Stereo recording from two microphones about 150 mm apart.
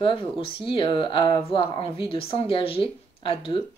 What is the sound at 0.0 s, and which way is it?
Speech, 35° left (ahead or behind).